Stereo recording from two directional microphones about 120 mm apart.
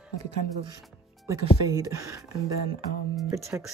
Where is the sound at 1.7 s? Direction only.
30° right (ahead or behind).